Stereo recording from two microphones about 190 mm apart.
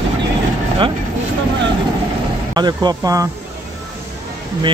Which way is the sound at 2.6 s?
20° right (ahead or behind).